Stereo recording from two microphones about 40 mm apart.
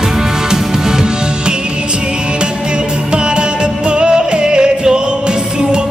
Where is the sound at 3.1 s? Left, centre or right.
Right.